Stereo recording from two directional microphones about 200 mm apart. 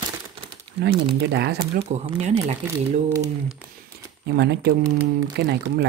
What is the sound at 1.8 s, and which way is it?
Speech, 30° right (ahead or behind).